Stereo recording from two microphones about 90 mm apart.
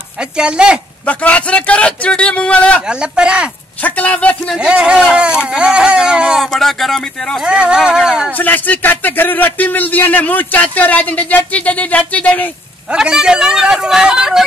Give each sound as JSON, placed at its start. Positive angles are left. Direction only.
{"t": 0.2, "sound": "speech", "side_deg": -10}
{"t": 1.0, "sound": "a man's voice", "side_deg": 15}
{"t": 2.9, "sound": "speech", "side_deg": -10}
{"t": 3.8, "sound": "a man's voice", "side_deg": 20}
{"t": 4.6, "sound": "speech", "side_deg": -10}
{"t": 6.4, "sound": "speech", "side_deg": 5}
{"t": 7.4, "sound": "speech", "side_deg": -10}
{"t": 8.3, "sound": "speech", "side_deg": 20}
{"t": 12.9, "sound": "speech", "side_deg": -10}